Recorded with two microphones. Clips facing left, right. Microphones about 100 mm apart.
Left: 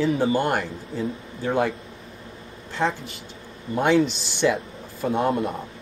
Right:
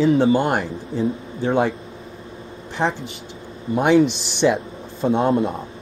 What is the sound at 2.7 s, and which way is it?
Speech, 20° right (ahead or behind).